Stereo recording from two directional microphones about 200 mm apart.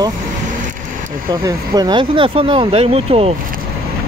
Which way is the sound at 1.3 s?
20° right (ahead or behind).